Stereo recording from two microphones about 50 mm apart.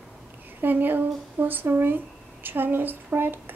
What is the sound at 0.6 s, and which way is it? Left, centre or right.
Speech, right.